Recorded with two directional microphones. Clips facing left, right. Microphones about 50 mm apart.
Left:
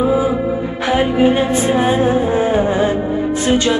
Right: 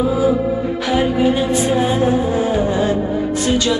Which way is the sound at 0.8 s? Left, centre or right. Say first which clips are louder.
Left 3 dB; left.